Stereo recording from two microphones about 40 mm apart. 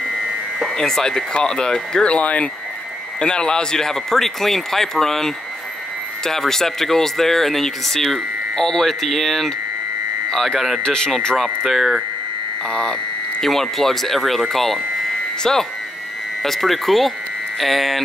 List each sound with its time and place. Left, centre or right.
0.7 s speech: centre
10.8 s speech: centre
11.3 s speech: centre
12.6 s speech: centre
13.4 s speech: centre
16.4 s speech: centre